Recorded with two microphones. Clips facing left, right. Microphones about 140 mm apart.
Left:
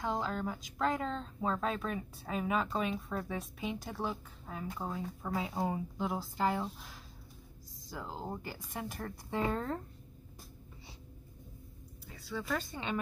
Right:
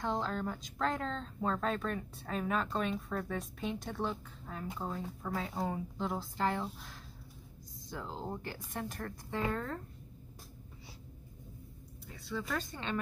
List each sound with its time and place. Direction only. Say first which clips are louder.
0.0 s speech: even; 5° left (ahead or behind)
9.4 s speech: left 2 dB; 20° left (ahead or behind)
12.1 s speech: left 1 dB; centre (ahead or behind)